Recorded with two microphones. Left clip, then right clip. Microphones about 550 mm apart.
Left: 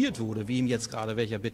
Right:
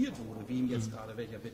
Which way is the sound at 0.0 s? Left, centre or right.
Left.